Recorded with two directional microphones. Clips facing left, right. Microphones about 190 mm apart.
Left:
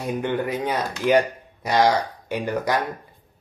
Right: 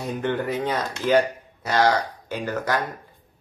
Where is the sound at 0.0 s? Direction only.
10° left (ahead or behind).